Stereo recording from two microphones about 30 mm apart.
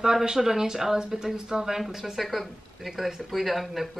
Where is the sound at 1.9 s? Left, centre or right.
Centre.